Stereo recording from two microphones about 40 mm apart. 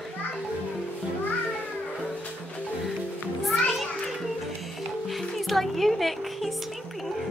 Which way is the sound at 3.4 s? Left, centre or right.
Centre.